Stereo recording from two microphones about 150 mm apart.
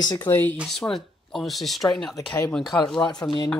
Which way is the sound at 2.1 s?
20° left (ahead or behind).